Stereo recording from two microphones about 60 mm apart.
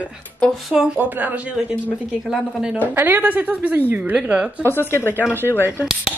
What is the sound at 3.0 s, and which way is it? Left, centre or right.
Speech, right.